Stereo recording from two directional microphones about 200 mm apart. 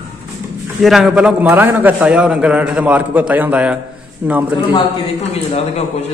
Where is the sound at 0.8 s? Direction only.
Centre (ahead or behind).